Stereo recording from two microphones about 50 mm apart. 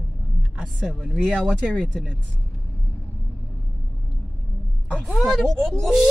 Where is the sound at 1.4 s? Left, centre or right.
Right.